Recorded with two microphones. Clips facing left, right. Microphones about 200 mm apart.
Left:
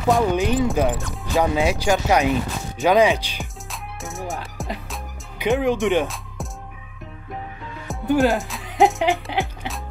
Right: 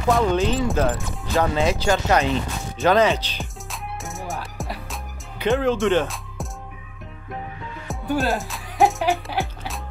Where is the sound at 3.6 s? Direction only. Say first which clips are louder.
Right 1 dB; centre (ahead or behind).